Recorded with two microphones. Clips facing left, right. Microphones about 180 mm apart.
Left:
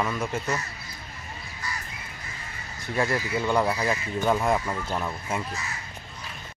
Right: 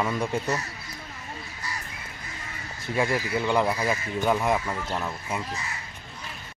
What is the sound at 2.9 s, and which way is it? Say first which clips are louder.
Speech: right 1 dB; 15° right (ahead or behind).